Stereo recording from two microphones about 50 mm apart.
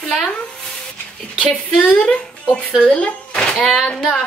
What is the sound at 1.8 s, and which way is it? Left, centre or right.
Speech, centre.